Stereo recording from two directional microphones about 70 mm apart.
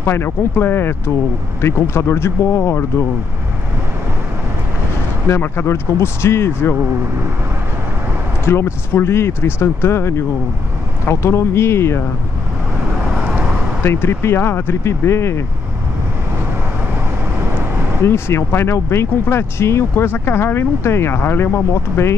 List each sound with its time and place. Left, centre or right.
0.0 s speech: left
5.3 s speech: left
8.5 s speech: left
14.0 s speech: left
18.0 s speech: left